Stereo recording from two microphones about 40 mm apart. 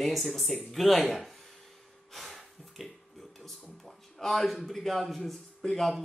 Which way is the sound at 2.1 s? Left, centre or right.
Centre.